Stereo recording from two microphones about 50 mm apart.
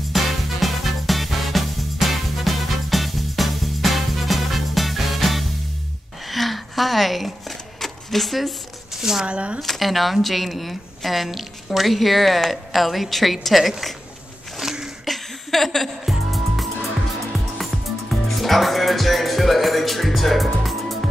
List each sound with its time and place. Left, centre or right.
0.1 s music: centre
6.2 s a sound: centre
9.2 s speech: right
9.6 s speech: centre
14.6 s a sound: centre
15.0 s music: centre